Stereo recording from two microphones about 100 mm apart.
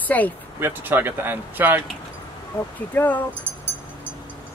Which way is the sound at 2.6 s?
20° left (ahead or behind).